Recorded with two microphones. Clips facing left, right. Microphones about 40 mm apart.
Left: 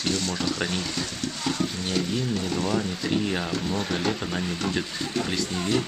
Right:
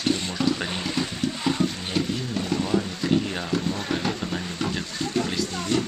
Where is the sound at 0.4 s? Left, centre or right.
Centre.